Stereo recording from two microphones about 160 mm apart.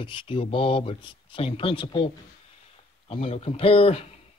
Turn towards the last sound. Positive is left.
turn(degrees=40)  # may be behind; listen again after turning